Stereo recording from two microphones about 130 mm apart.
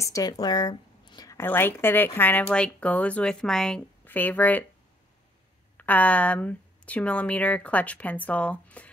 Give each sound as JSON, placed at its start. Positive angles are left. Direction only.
{"t": 0.0, "sound": "a woman's voice", "side_deg": 25}
{"t": 5.8, "sound": "a woman's voice", "side_deg": 10}